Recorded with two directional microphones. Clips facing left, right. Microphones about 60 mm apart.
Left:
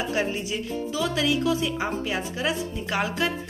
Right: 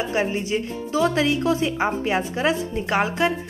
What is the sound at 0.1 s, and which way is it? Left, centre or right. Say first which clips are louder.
A woman's voice: right 4 dB; right.